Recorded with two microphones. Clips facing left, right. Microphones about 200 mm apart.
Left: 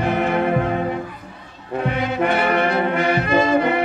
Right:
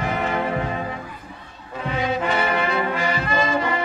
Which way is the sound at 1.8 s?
60° left (ahead or behind).